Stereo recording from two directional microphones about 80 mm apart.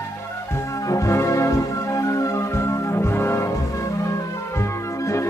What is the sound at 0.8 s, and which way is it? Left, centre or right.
Music, left.